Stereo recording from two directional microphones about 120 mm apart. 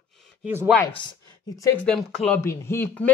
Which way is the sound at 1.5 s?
30° left (ahead or behind).